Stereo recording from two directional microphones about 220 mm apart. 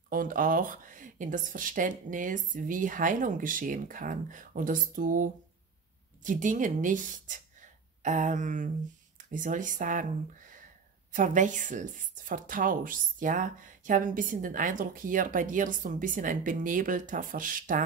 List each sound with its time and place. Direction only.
0.1 s speech: 40° right (ahead or behind)
11.1 s speech: 35° right (ahead or behind)